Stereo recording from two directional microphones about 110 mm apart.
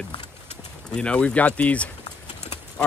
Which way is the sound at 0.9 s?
10° left (ahead or behind).